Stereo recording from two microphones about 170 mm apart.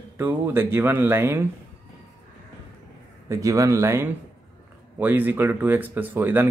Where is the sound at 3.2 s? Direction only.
20° right (ahead or behind).